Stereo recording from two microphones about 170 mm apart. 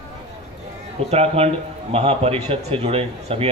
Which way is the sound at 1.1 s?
35° right (ahead or behind).